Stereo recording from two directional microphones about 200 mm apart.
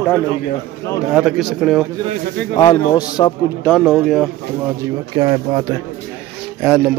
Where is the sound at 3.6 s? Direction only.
Centre (ahead or behind).